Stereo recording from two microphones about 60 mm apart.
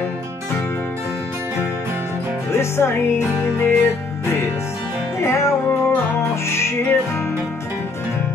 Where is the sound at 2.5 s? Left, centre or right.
Left.